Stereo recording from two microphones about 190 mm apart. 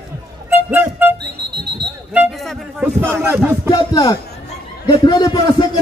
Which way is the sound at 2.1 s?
5° right (ahead or behind).